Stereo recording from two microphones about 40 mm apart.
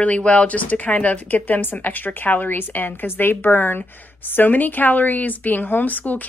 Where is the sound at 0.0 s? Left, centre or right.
Left.